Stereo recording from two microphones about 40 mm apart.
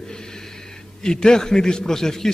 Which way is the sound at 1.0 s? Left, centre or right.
Centre.